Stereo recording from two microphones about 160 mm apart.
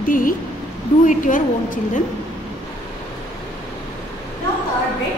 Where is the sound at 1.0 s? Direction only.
55° left (ahead or behind).